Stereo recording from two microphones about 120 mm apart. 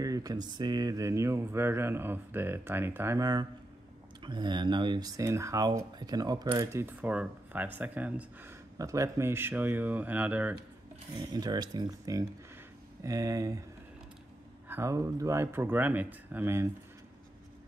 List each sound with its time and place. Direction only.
0.0 s speech: 30° right (ahead or behind)
4.2 s speech: 40° right (ahead or behind)
6.8 s speech: 15° right (ahead or behind)
8.7 s speech: 30° right (ahead or behind)
11.1 s speech: 35° right (ahead or behind)
14.7 s speech: 25° right (ahead or behind)